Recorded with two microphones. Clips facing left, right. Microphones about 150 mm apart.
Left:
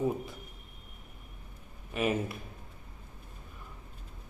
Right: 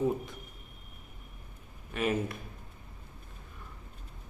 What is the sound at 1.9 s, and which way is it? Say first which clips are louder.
Speech: even; 10° left (ahead or behind).